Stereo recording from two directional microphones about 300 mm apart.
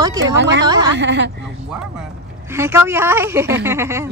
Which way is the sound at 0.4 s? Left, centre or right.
Right.